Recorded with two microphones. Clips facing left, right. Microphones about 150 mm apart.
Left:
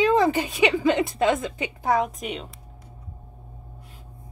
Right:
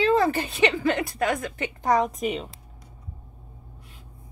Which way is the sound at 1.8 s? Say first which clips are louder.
Right 1 dB; 5° left (ahead or behind).